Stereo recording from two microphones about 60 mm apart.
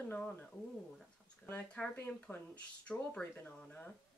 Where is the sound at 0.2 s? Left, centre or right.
Centre.